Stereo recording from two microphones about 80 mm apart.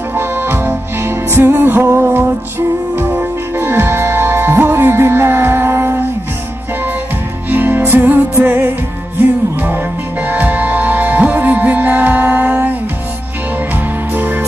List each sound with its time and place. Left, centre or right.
0.1 s music: right
7.4 s music: right
10.2 s music: right
14.1 s music: right